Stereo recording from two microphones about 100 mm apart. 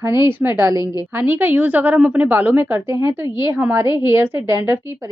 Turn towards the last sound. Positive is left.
turn(degrees=-25)  # may be behind; listen again after turning